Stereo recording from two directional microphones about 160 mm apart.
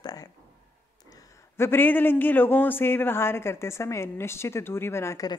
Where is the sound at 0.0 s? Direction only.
25° left (ahead or behind).